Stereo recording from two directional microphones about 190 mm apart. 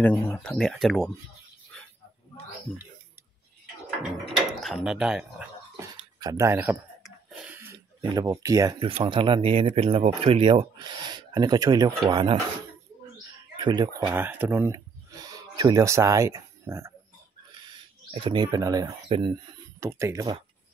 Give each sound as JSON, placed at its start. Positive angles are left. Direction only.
{"t": 0.0, "sound": "speech", "side_deg": 10}
{"t": 4.2, "sound": "mechanisms", "side_deg": 0}
{"t": 5.8, "sound": "speech", "side_deg": -20}
{"t": 13.6, "sound": "speech", "side_deg": -25}
{"t": 18.1, "sound": "speech", "side_deg": -25}